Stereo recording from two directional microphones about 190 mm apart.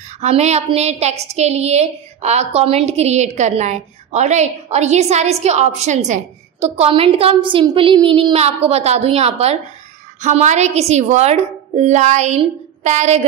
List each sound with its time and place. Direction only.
0.2 s a woman's voice: 35° right (ahead or behind)